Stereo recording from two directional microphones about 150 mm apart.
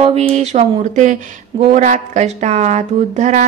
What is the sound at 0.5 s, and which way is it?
Speech, 55° right (ahead or behind).